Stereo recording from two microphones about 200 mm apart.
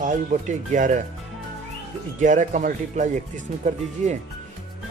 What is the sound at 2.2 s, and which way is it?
Speech, 40° right (ahead or behind).